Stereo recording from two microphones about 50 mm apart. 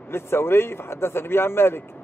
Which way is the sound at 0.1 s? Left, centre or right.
Left.